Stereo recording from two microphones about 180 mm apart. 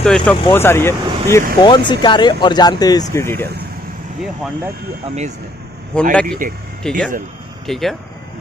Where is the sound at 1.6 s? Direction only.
25° left (ahead or behind).